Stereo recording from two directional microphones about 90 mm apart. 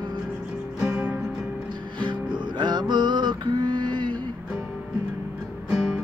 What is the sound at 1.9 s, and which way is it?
Music, 60° right (ahead or behind).